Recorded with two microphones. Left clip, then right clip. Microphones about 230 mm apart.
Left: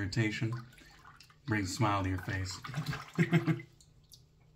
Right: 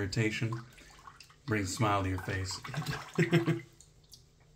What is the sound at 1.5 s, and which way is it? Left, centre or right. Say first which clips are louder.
Speech: right 1 dB; centre.